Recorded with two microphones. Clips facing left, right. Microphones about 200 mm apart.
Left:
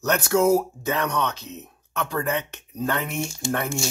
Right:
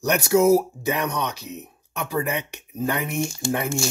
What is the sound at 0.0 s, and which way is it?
Speech, 10° right (ahead or behind).